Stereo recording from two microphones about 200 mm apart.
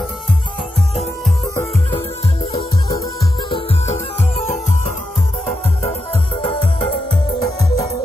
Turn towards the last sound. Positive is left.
turn(degrees=20)  # may be behind; listen again after turning